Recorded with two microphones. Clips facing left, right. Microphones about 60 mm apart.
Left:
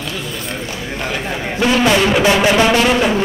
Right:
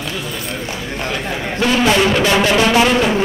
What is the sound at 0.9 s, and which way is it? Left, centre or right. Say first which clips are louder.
A man's voice: left 1 dB; centre.